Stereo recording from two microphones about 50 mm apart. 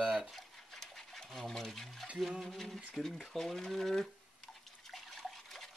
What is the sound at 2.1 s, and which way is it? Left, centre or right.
Speech, centre.